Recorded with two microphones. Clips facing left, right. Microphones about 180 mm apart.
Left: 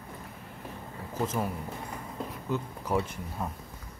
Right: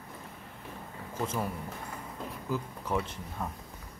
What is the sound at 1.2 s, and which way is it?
Speech, 5° left (ahead or behind).